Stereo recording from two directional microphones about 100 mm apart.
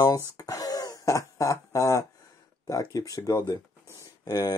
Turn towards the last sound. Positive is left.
turn(degrees=35)  # may be behind; listen again after turning